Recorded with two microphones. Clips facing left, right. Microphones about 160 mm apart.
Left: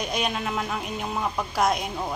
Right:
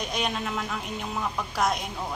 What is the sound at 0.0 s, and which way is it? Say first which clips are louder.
A woman's voice: left 2 dB; 5° left (ahead or behind).